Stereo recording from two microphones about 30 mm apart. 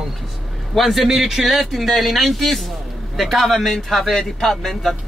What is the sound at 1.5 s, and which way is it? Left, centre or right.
Speech, centre.